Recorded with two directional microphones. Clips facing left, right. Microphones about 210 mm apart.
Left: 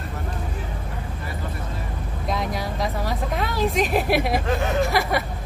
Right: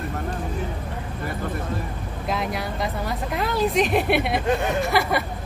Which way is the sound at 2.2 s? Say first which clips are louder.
Even; centre (ahead or behind).